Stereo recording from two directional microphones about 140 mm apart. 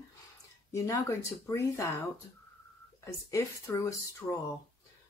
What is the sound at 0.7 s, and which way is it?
Speech, 25° left (ahead or behind).